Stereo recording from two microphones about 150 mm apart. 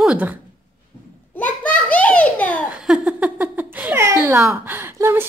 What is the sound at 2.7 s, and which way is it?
Giggle, 5° right (ahead or behind).